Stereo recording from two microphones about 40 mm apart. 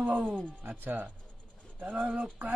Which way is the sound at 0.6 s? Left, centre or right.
Right.